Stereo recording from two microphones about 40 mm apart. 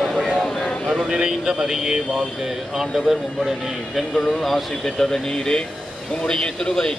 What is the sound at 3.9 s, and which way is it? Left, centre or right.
Speech, centre.